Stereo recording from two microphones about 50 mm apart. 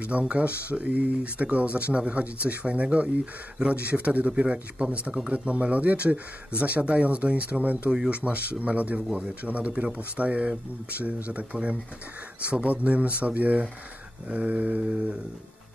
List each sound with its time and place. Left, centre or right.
0.0 s speech: right
12.4 s speech: right